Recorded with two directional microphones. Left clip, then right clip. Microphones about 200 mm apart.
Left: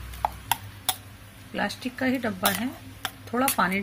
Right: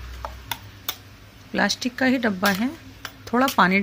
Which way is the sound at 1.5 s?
40° right (ahead or behind).